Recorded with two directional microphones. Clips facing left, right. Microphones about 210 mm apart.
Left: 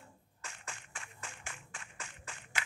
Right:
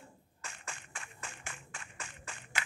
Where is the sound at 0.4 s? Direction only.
50° right (ahead or behind).